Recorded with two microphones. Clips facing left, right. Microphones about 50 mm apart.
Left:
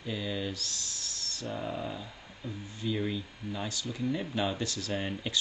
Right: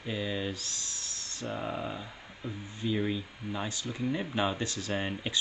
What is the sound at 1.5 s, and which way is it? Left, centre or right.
Speech, centre.